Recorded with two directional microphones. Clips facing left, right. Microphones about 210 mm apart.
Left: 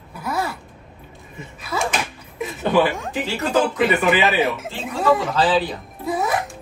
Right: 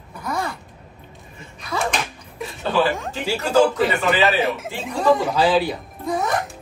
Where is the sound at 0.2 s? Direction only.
5° left (ahead or behind).